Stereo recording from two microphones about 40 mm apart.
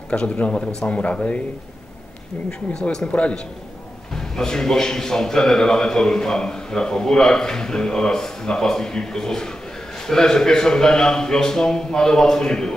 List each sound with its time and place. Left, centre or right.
0.1 s speech: left
3.1 s speech: left
4.1 s a man's voice: centre